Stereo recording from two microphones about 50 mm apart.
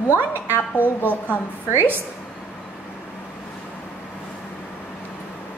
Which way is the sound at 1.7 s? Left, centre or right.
Right.